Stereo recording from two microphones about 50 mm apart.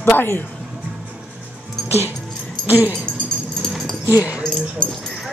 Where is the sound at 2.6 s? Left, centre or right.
Right.